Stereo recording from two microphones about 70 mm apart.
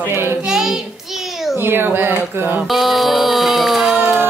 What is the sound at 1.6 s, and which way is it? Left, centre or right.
Speech, right.